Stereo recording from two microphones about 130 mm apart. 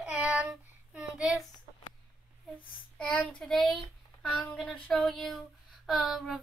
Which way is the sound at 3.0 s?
5° left (ahead or behind).